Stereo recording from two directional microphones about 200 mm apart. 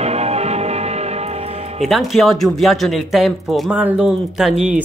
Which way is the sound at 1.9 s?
Centre (ahead or behind).